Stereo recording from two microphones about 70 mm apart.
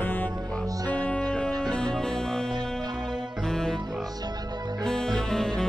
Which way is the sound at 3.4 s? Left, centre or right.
Centre.